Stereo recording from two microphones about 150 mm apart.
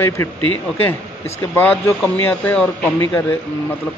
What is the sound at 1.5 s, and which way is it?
Speech, 15° left (ahead or behind).